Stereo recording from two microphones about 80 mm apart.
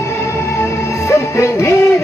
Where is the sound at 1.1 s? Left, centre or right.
Left.